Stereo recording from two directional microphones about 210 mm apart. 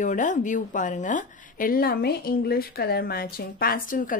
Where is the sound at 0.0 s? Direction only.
35° left (ahead or behind).